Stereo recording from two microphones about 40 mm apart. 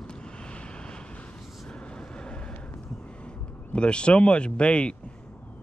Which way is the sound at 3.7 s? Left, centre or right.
Left.